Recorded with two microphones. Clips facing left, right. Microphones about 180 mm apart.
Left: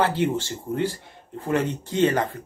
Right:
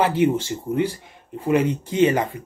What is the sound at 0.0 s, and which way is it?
Speech, 15° right (ahead or behind).